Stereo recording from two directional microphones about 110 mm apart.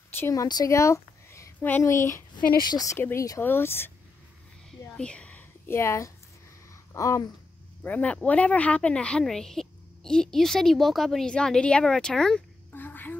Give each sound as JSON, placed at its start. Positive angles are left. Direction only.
{"t": 0.3, "sound": "a woman's voice", "side_deg": 35}
{"t": 2.3, "sound": "a woman's voice", "side_deg": 40}
{"t": 2.9, "sound": "speech", "side_deg": 25}
{"t": 4.8, "sound": "a sound", "side_deg": 10}
{"t": 7.8, "sound": "speech", "side_deg": 15}
{"t": 12.7, "sound": "a sound", "side_deg": 15}